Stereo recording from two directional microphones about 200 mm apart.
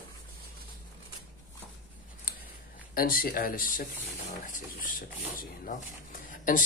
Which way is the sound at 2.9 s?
45° left (ahead or behind).